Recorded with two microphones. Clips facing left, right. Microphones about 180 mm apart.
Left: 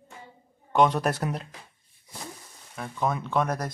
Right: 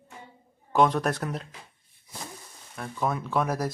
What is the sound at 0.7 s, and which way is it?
Speech, centre (ahead or behind).